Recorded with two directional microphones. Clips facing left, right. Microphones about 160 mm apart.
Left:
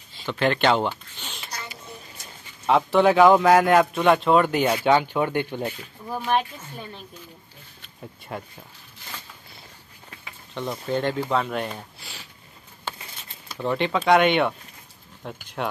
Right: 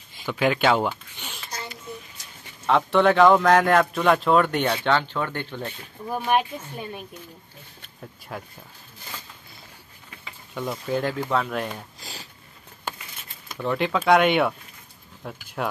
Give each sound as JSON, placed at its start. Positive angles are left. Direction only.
{"t": 0.2, "sound": "speech", "side_deg": -5}
{"t": 2.6, "sound": "a man's voice", "side_deg": 5}
{"t": 6.0, "sound": "speech", "side_deg": -15}
{"t": 8.3, "sound": "a man's voice", "side_deg": 5}
{"t": 10.5, "sound": "a man's voice", "side_deg": -5}
{"t": 12.0, "sound": "sniff", "side_deg": -40}
{"t": 13.6, "sound": "a man's voice", "side_deg": 0}